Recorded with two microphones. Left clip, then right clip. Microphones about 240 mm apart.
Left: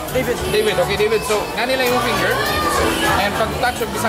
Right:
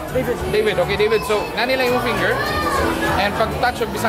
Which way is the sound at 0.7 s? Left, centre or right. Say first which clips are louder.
Even; centre.